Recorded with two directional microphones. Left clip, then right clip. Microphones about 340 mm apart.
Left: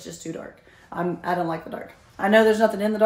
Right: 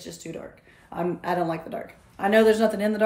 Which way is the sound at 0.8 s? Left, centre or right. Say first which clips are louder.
Left 1 dB; centre.